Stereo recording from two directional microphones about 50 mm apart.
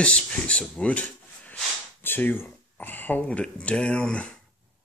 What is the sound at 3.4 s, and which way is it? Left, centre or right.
Speech, left.